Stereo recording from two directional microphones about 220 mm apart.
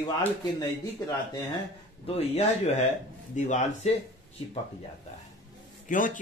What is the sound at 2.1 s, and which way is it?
Speech, 30° left (ahead or behind).